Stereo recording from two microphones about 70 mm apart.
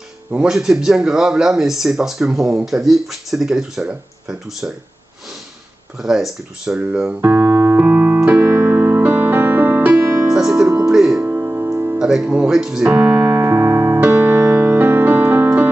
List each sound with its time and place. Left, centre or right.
0.5 s speech: centre
5.9 s speech: centre
7.1 s speech: right
7.7 s keyboard: right
8.3 s music: right
10.2 s music: centre
11.2 s music: right
12.0 s music: centre
12.3 s speech: centre
12.9 s keyboard: right
14.1 s music: right
14.5 s music: right